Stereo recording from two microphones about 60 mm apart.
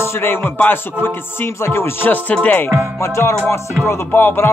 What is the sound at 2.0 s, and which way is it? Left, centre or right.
Music, left.